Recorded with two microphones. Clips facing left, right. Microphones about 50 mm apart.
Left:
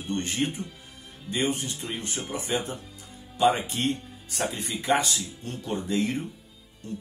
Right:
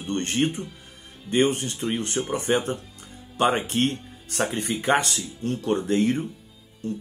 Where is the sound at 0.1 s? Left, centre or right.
Right.